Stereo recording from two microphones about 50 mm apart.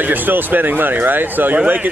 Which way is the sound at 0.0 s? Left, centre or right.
Right.